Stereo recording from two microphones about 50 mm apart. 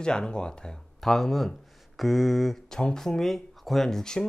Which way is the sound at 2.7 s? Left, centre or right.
Centre.